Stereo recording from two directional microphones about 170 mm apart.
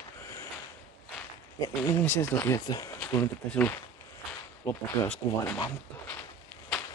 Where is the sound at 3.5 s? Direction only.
10° left (ahead or behind).